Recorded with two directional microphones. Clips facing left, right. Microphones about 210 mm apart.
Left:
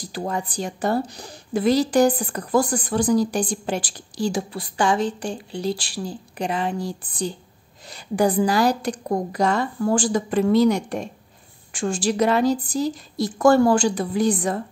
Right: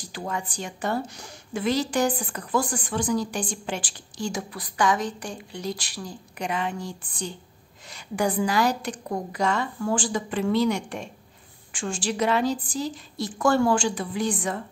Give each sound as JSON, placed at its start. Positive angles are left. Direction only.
{"t": 0.0, "sound": "speech", "side_deg": 35}